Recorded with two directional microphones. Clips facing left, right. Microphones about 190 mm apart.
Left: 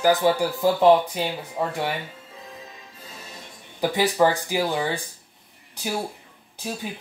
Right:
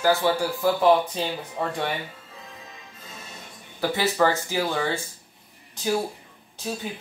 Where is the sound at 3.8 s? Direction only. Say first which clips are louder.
Left 2 dB; 15° left (ahead or behind).